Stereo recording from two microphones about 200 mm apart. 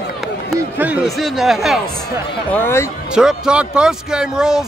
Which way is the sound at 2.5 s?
10° left (ahead or behind).